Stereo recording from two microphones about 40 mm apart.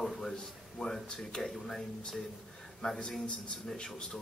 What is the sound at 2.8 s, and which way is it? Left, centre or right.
Speech, centre.